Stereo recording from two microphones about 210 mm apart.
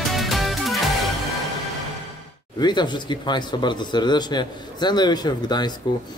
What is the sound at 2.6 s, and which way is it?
A man's voice, 20° left (ahead or behind).